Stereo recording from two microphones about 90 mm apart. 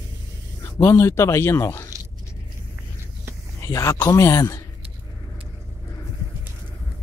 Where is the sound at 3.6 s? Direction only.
35° left (ahead or behind).